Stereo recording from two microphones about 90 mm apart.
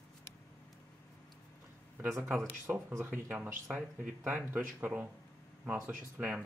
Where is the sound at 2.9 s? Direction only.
25° right (ahead or behind).